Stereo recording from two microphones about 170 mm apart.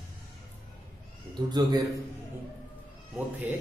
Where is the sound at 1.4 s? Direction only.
25° right (ahead or behind).